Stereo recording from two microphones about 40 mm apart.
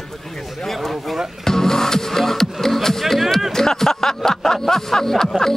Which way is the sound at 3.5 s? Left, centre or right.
Centre.